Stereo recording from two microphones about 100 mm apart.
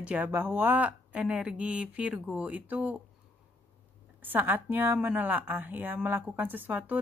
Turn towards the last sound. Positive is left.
turn(degrees=-15)  # may be behind; listen again after turning